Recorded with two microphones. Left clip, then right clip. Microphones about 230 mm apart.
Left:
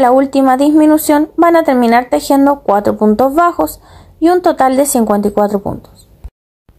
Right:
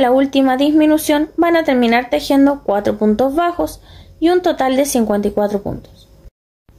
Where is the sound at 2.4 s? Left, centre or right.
Centre.